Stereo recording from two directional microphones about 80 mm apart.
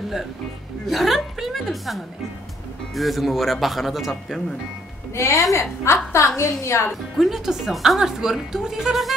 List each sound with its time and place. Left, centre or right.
0.8 s speech: centre
5.1 s a woman's voice: left
6.9 s speech: centre